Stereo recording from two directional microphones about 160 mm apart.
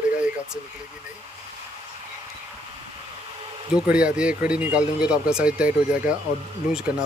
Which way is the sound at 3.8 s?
5° right (ahead or behind).